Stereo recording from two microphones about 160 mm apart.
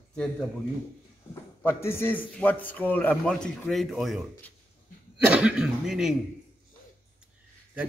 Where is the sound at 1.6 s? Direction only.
15° left (ahead or behind).